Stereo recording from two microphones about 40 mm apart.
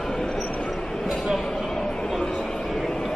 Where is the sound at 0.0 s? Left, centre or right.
Centre.